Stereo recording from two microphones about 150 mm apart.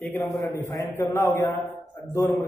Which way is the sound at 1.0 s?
15° left (ahead or behind).